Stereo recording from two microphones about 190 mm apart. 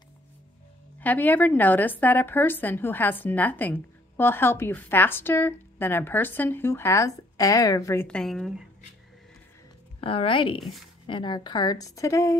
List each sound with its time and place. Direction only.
1.0 s speech: 10° left (ahead or behind)
9.9 s a woman's voice: 30° left (ahead or behind)